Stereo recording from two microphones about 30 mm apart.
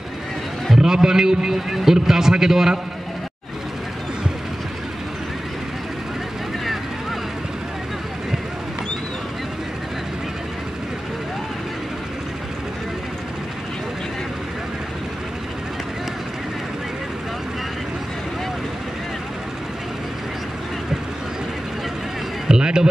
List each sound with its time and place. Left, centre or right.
0.7 s a man's voice: right
22.5 s music: right